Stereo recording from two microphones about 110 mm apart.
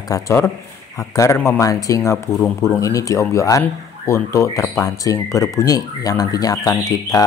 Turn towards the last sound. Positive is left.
turn(degrees=35)  # may be behind; listen again after turning